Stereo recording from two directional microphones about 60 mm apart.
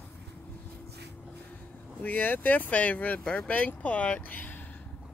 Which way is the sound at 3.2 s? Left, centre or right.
Centre.